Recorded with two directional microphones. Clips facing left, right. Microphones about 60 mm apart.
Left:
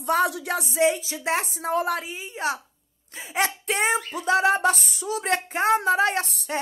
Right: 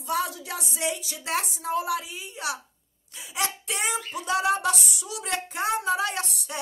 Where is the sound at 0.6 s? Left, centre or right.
Left.